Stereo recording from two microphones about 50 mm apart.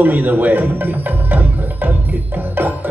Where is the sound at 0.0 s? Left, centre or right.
Right.